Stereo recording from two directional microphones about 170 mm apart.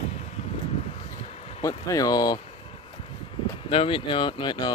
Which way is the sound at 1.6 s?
20° left (ahead or behind).